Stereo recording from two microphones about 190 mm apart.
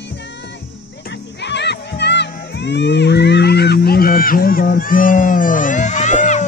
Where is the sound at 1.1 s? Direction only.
65° left (ahead or behind).